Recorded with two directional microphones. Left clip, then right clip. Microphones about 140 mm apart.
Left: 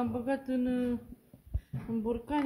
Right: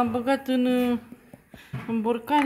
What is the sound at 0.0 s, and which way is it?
Speech, 40° right (ahead or behind).